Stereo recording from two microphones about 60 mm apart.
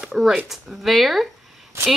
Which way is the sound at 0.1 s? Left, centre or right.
Centre.